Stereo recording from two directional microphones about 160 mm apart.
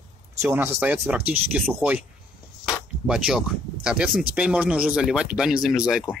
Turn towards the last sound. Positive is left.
turn(degrees=-5)  # may be behind; listen again after turning